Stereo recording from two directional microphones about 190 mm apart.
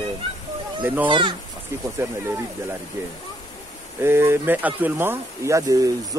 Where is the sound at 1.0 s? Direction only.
25° right (ahead or behind).